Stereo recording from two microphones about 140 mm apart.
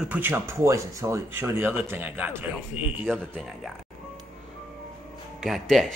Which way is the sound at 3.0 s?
5° left (ahead or behind).